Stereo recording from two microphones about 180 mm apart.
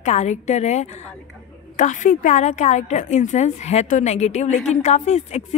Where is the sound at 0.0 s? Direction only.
40° left (ahead or behind).